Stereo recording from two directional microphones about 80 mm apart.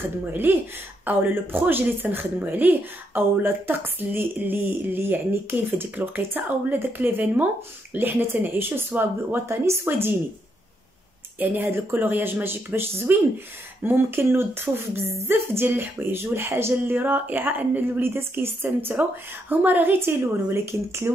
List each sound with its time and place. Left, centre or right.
0.2 s speech: right
11.3 s speech: right